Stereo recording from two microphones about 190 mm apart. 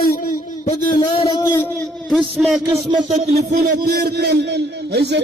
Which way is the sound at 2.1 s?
Centre (ahead or behind).